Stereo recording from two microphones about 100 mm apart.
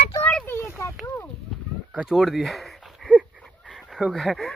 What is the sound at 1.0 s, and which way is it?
Speech, 15° left (ahead or behind).